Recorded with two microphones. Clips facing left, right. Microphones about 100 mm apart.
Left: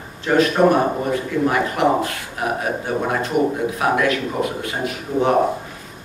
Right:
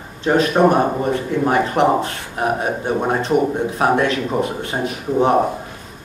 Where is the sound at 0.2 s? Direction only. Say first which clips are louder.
Right 1 dB; 20° right (ahead or behind).